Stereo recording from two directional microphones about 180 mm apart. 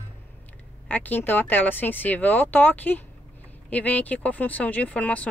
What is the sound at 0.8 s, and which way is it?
Speech, 10° left (ahead or behind).